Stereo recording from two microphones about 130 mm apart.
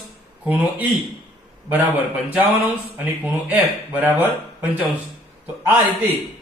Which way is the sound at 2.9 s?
10° right (ahead or behind).